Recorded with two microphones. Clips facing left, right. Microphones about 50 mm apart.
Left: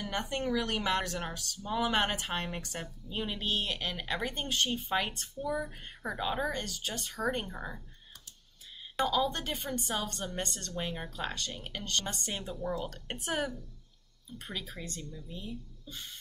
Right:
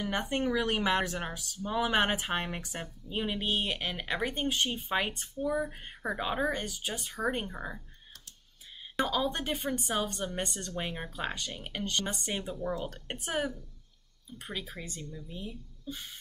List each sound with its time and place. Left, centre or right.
0.0 s a woman's voice: centre
9.0 s a woman's voice: centre